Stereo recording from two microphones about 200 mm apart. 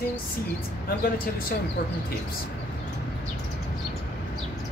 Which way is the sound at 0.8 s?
45° left (ahead or behind).